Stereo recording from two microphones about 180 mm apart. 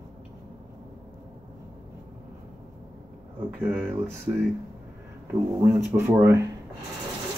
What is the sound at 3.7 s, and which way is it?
Speech, 10° right (ahead or behind).